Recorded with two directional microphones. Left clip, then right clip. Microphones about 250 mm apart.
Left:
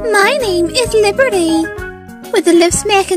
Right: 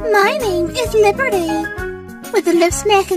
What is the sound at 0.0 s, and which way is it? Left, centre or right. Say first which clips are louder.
Music: left 2 dB; left.